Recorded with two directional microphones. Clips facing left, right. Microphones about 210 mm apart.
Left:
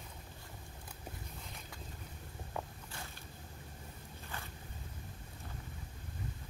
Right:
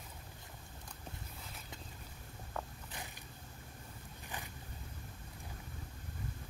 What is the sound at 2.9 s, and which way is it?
Creak, 15° right (ahead or behind).